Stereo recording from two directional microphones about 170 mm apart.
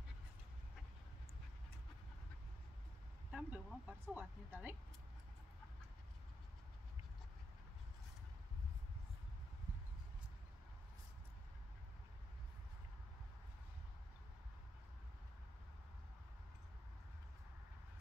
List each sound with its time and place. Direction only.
3.3 s speech: 5° right (ahead or behind)